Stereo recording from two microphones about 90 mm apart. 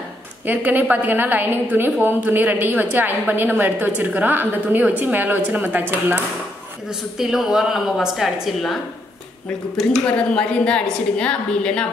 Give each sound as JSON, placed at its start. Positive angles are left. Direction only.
{"t": 0.5, "sound": "a woman's voice", "side_deg": -20}
{"t": 6.9, "sound": "a woman's voice", "side_deg": -5}
{"t": 10.0, "sound": "a woman's voice", "side_deg": 15}